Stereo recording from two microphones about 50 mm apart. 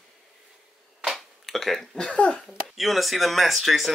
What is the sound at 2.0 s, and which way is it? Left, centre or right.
Speech, left.